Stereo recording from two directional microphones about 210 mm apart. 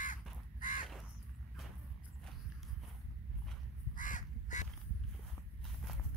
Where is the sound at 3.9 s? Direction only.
40° left (ahead or behind).